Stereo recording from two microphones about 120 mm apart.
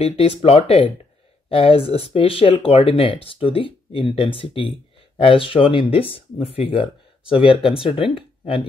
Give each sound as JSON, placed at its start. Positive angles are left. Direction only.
{"t": 0.0, "sound": "speech", "side_deg": 55}